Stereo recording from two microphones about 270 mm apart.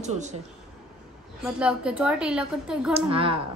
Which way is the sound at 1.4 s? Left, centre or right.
Centre.